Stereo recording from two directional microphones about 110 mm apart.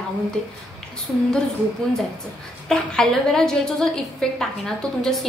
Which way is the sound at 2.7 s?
5° left (ahead or behind).